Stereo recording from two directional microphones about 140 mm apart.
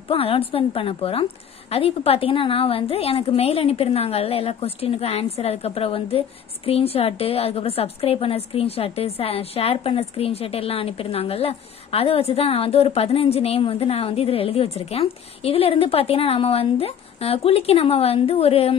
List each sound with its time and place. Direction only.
0.1 s a woman's voice: 40° left (ahead or behind)